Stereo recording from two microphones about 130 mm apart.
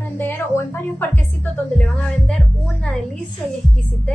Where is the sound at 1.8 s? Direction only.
5° left (ahead or behind).